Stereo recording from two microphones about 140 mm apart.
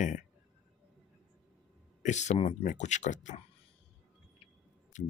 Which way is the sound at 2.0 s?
55° left (ahead or behind).